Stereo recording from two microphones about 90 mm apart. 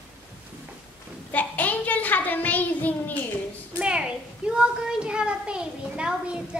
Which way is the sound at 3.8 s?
10° right (ahead or behind).